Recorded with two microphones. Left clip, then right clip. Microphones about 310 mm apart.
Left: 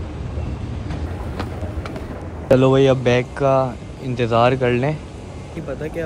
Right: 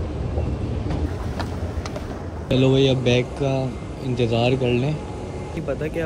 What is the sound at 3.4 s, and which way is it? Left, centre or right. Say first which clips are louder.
Speech: left 8 dB; centre.